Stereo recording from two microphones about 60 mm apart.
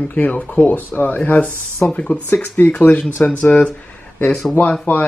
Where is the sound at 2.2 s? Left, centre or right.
Left.